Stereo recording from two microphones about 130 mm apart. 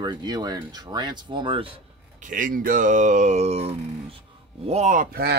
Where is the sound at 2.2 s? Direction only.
90° right; by 4.1 s 50° right (ahead or behind).